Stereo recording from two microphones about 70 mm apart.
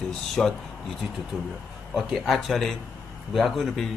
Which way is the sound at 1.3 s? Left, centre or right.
Centre.